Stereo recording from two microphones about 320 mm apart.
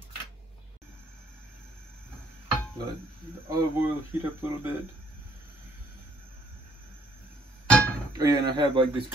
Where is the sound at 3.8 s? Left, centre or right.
Centre.